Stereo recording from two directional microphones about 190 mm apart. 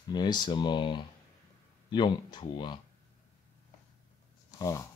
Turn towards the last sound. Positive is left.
turn(degrees=15)  # may be behind; listen again after turning